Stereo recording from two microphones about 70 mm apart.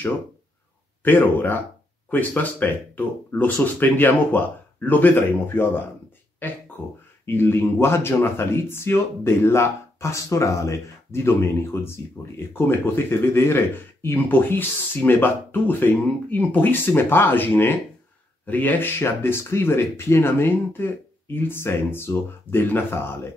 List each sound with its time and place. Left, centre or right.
1.0 s speech: left